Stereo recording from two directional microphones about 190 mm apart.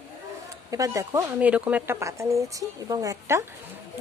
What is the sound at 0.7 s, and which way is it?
Speech, 15° right (ahead or behind).